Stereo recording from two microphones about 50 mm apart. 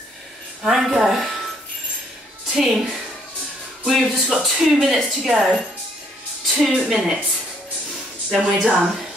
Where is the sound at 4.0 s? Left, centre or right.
Centre.